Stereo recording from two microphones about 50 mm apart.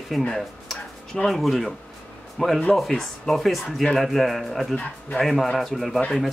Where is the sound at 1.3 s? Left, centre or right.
Centre.